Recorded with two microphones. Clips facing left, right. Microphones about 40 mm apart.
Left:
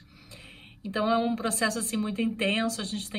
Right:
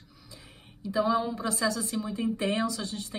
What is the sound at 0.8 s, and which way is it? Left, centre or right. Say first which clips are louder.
A woman's voice: left 1 dB; left.